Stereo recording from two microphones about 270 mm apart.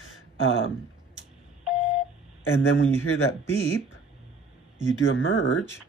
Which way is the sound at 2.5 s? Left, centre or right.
Left.